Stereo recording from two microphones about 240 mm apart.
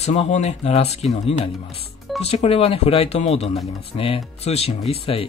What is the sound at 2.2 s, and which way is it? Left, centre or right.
Speech, left.